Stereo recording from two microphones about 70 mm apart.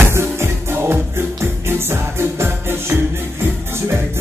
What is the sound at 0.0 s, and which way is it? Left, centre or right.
Music, right.